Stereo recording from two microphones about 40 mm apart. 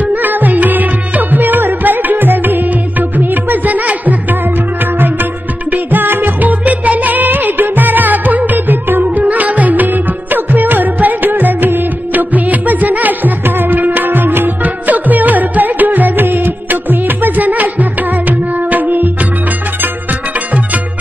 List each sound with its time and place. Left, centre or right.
0.1 s music: right
5.7 s music: right
9.0 s music: right